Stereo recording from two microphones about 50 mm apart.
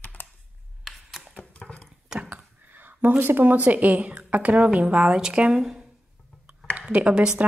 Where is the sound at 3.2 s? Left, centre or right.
Right; by 5.9 s centre.